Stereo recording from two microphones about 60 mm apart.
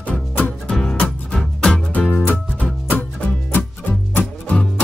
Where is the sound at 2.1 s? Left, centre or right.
Left.